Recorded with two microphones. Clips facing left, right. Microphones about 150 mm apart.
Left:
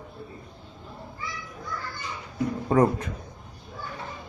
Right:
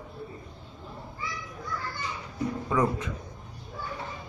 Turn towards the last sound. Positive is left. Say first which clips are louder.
# left 5 dB
turn(degrees=50)  # may be behind; listen again after turning